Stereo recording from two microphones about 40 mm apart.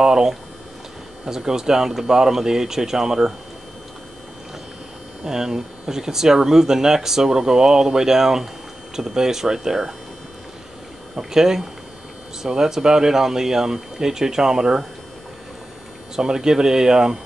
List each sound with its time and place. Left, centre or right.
0.0 s speech: centre
5.2 s speech: centre
11.1 s speech: centre
16.2 s speech: centre